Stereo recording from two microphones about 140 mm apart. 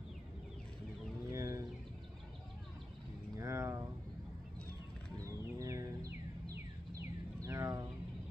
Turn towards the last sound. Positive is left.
turn(degrees=-25)  # may be behind; listen again after turning